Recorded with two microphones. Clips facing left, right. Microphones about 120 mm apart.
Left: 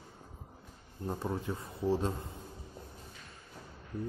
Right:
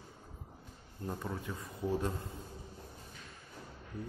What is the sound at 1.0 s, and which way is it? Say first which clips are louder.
A man's voice: left 4 dB; 25° left (ahead or behind).